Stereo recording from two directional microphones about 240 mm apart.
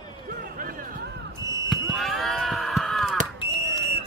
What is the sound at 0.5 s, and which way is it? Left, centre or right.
Music, right.